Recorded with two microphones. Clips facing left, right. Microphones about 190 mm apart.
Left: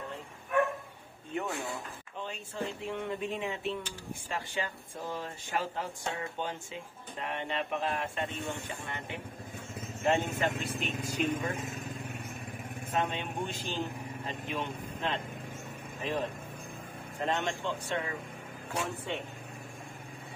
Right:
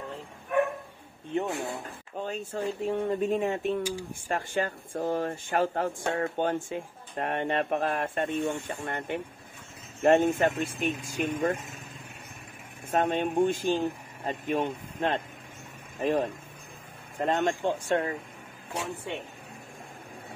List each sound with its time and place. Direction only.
1.3 s a sound: 30° right (ahead or behind)
2.1 s speech: 45° right (ahead or behind)
12.9 s speech: 50° right (ahead or behind)